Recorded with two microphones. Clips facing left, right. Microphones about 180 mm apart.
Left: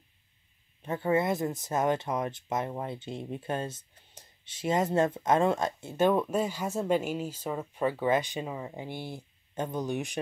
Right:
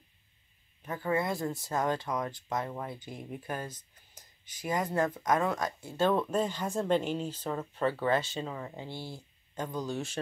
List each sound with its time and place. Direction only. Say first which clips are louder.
0.8 s speech: left 4 dB; 25° left (ahead or behind)